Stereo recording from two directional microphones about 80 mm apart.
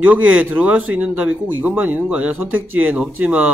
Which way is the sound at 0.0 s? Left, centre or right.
Centre.